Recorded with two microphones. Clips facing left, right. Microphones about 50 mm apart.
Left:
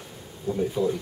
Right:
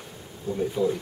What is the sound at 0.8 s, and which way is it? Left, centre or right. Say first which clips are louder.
Speech: right 1 dB; centre.